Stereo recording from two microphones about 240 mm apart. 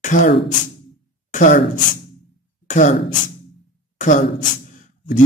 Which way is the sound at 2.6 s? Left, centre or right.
Left.